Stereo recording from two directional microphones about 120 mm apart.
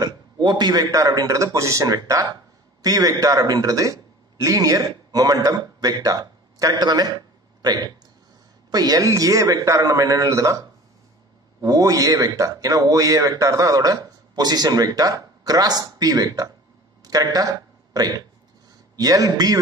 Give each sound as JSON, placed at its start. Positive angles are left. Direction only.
{"t": 0.0, "sound": "a man's voice", "side_deg": -35}
{"t": 11.6, "sound": "a man's voice", "side_deg": -30}